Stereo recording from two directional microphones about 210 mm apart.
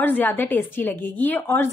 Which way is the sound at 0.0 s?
10° left (ahead or behind).